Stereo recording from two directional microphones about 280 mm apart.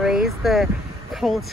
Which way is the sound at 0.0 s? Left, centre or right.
Centre.